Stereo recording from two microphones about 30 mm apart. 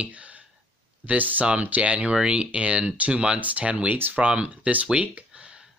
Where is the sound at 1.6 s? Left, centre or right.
Right.